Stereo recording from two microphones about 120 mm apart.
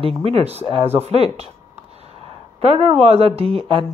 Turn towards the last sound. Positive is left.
turn(degrees=-50)  # may be behind; listen again after turning